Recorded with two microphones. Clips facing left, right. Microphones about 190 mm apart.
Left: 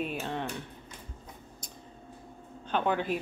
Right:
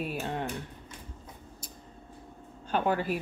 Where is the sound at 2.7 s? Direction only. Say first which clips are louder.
Right 1 dB; 5° right (ahead or behind).